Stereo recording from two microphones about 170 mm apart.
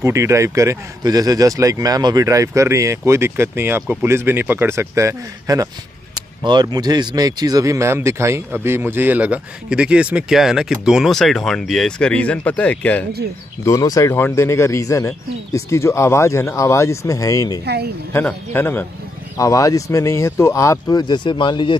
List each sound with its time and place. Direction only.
0.0 s speech: 15° right (ahead or behind); by 13.0 s 10° left (ahead or behind)
13.7 s speech: 20° left (ahead or behind)
17.6 s a woman's voice: 75° right (ahead or behind)
18.1 s speech: 15° left (ahead or behind)